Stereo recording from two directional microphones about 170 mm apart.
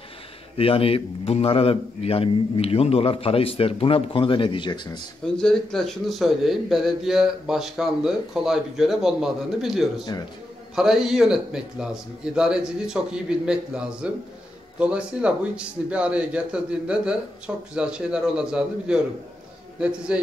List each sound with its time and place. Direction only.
0.6 s a man's voice: 35° left (ahead or behind)
5.2 s a man's voice: 5° left (ahead or behind)
20.1 s speech: 5° right (ahead or behind)